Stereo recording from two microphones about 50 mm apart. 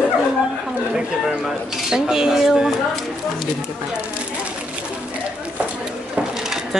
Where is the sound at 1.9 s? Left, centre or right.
Centre.